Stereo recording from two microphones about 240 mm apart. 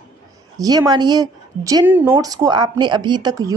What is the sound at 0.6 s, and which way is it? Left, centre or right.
Speech, centre.